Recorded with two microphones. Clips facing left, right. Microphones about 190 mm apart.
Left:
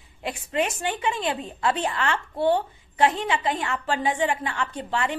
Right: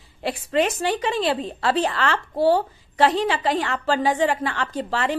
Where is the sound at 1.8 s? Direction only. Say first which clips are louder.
Right 3 dB; 90° right.